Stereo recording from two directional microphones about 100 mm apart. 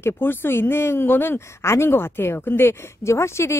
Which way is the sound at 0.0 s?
20° left (ahead or behind).